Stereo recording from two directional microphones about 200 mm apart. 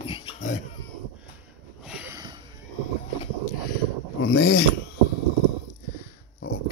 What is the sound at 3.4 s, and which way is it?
Boat, 45° left (ahead or behind).